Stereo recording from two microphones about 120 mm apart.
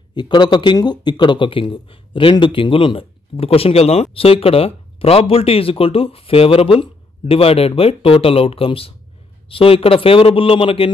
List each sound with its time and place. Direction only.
0.1 s speech: 40° left (ahead or behind)